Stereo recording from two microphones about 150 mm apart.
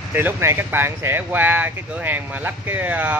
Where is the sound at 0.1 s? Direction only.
15° right (ahead or behind).